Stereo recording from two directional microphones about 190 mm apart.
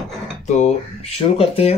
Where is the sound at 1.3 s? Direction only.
30° left (ahead or behind).